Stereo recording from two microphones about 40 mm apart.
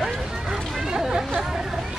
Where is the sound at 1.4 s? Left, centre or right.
Centre.